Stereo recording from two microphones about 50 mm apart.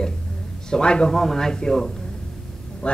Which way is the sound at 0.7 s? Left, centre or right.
Centre.